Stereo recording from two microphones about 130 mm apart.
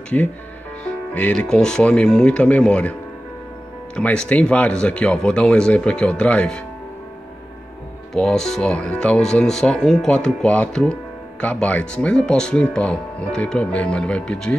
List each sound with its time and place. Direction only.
0.1 s speech: 10° left (ahead or behind)
8.1 s speech: 5° left (ahead or behind)